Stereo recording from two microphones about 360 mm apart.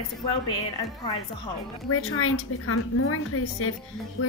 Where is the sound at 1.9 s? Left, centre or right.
Left.